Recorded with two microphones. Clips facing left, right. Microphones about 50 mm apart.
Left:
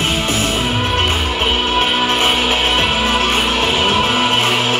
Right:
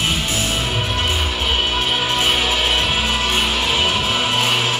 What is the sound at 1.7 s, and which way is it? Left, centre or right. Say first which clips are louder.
Music: left 4 dB; left.